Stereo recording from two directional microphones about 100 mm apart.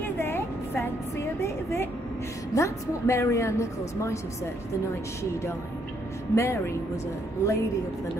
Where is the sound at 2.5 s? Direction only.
30° left (ahead or behind).